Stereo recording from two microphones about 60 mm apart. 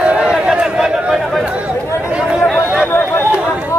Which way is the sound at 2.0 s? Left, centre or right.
Centre.